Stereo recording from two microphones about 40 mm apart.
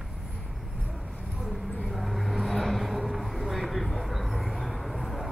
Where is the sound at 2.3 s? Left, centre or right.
Centre.